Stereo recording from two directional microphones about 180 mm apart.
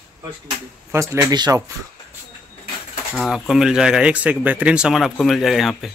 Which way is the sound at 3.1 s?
Centre (ahead or behind).